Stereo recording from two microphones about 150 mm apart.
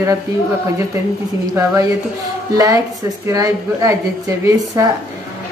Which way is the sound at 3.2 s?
25° right (ahead or behind).